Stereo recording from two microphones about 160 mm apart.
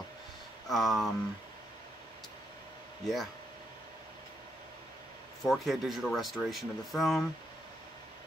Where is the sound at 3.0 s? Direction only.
Centre (ahead or behind).